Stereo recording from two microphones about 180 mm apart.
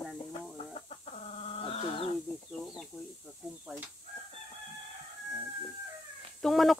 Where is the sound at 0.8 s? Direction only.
35° left (ahead or behind).